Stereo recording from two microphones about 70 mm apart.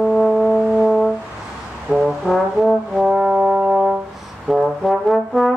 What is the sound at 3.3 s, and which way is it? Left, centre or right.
Brass instrument, right.